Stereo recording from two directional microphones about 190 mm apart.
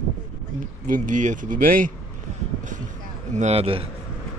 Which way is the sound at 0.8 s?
45° right (ahead or behind).